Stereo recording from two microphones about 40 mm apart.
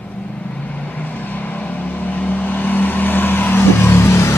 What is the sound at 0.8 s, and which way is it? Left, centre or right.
Vehicle, left.